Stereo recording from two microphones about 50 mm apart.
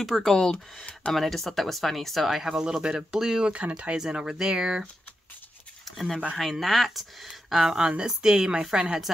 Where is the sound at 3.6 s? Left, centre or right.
Right.